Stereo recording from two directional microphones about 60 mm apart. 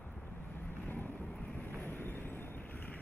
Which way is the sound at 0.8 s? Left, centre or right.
Left.